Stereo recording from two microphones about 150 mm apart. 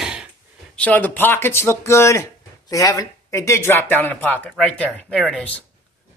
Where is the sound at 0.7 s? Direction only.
10° left (ahead or behind).